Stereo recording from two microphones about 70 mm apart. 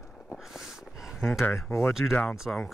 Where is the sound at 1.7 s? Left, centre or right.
Left.